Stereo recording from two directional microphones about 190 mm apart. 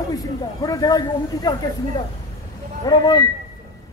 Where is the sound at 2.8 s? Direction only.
20° left (ahead or behind).